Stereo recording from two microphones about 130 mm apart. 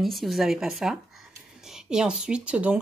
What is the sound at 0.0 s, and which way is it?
Speech, centre (ahead or behind).